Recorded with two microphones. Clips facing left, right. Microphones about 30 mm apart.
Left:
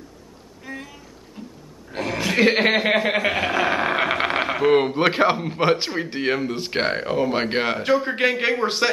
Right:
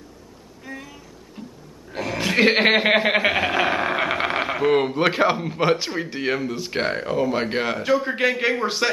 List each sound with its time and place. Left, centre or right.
0.7 s a sound: centre
1.4 s pig: centre
1.9 s throat clearing: centre
2.1 s speech: centre
3.3 s a sound: centre
6.1 s a man's voice: centre